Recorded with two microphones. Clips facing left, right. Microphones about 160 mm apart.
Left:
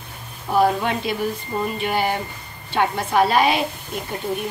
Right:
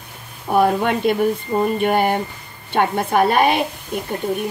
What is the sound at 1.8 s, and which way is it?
A woman's voice, 50° right (ahead or behind).